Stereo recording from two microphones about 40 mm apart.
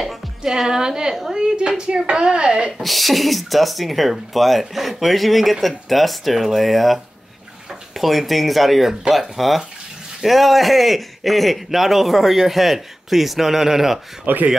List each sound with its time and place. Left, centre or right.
0.0 s music: centre
1.3 s speech: centre
2.8 s speech: centre
14.2 s speech: right